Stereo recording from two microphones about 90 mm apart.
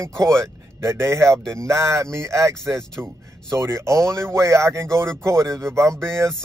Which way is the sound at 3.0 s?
20° right (ahead or behind).